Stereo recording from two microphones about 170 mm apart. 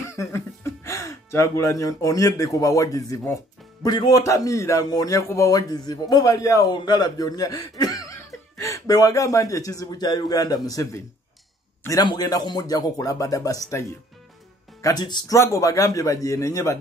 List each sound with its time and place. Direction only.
0.1 s a man's voice: 15° left (ahead or behind)